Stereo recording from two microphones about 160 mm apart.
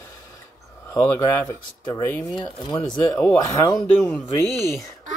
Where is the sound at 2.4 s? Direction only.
25° left (ahead or behind).